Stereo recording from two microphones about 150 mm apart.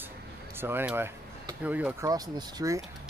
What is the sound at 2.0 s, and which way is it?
Speech, 20° right (ahead or behind).